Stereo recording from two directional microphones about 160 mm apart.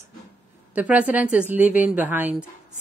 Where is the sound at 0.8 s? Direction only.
10° right (ahead or behind).